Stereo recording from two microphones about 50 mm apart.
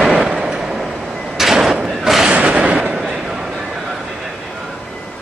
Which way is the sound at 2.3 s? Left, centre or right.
Right.